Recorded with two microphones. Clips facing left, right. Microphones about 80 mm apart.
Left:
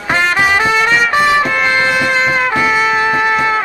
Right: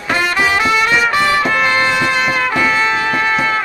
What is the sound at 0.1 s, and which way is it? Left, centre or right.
Music, left.